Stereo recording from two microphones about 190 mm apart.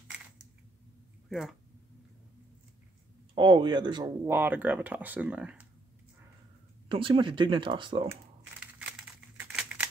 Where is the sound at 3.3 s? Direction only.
25° right (ahead or behind).